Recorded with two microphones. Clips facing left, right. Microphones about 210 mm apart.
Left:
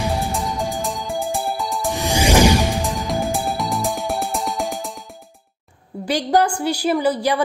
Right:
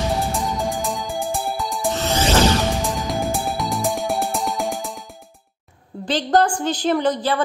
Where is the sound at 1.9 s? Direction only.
15° left (ahead or behind).